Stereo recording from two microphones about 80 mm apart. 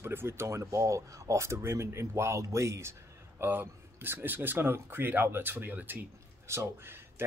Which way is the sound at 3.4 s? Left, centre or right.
Right.